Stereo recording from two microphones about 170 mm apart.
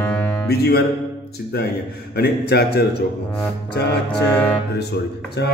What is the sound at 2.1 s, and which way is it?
Speech, 75° left (ahead or behind).